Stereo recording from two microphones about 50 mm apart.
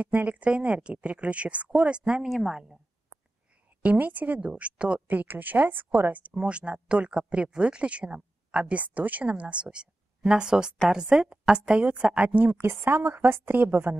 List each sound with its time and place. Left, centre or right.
0.0 s speech: right
2.2 s a woman's voice: centre
3.8 s a woman's voice: right
5.0 s a woman's voice: right
6.4 s speech: right
12.3 s a woman's voice: right